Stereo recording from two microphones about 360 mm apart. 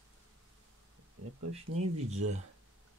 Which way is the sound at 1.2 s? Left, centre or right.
Right.